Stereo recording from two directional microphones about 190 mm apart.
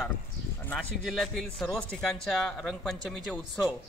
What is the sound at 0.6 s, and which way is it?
A man's voice, centre (ahead or behind).